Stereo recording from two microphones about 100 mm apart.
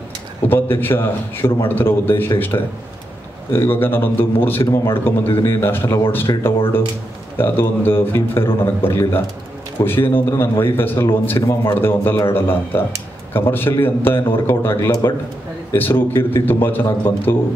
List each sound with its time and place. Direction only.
0.5 s a man's voice: 20° left (ahead or behind)